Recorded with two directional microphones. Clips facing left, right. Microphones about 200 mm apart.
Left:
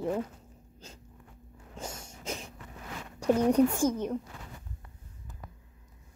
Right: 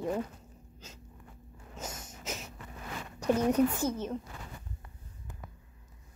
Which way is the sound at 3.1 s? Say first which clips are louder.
Left 3 dB; 10° left (ahead or behind).